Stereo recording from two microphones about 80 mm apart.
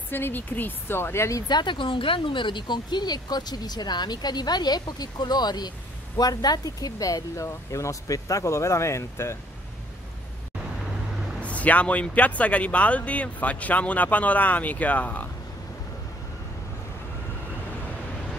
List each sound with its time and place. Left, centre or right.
0.1 s speech: left
1.5 s speech: left
11.4 s speech: centre